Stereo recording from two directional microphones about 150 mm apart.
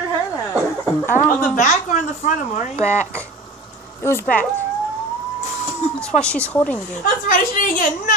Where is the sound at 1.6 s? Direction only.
55° left (ahead or behind).